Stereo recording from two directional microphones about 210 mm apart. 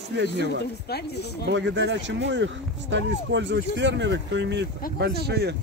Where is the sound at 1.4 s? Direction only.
60° right (ahead or behind).